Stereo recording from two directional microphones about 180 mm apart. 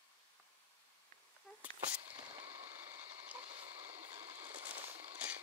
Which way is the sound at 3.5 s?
35° right (ahead or behind).